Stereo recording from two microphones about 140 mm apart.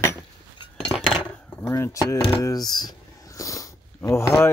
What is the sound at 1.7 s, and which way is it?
Speech, 20° left (ahead or behind).